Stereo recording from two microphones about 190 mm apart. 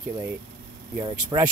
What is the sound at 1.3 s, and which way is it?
Speech, 25° right (ahead or behind).